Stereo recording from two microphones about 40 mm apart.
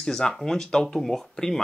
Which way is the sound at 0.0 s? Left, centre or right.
Centre.